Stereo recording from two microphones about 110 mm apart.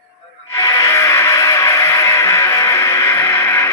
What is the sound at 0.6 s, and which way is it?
Music, 30° left (ahead or behind).